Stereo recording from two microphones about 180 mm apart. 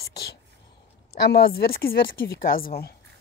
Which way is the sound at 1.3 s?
60° left (ahead or behind).